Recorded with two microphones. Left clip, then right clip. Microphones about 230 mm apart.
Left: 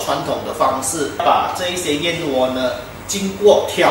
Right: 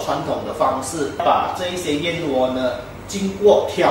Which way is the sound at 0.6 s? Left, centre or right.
Centre.